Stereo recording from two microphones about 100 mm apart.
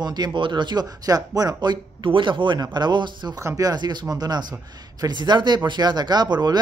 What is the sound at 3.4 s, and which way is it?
A man's voice, 35° right (ahead or behind).